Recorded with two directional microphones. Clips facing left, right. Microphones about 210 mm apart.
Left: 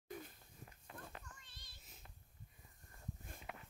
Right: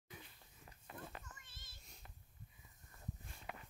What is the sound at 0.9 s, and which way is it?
Children playing, 5° right (ahead or behind).